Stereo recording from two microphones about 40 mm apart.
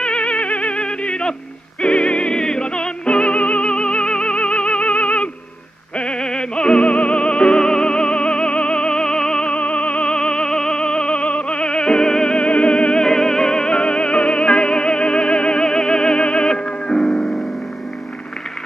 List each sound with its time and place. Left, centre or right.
0.0 s theremin: left
0.8 s yodeling: left
1.8 s music: centre
2.0 s music: left
9.5 s music: left
13.0 s music: centre